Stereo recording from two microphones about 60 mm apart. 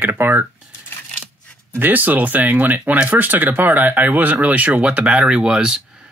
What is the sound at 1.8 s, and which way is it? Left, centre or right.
Speech, right.